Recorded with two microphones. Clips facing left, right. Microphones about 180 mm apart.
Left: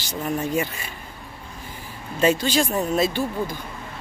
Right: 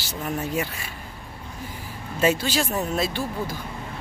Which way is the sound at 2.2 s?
5° right (ahead or behind).